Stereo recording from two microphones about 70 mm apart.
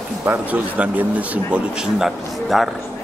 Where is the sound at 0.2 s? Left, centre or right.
Right.